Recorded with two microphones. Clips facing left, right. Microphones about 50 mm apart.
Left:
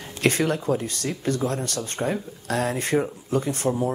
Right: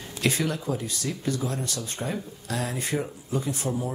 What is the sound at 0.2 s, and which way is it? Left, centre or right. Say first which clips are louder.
Speech: left 4 dB; left.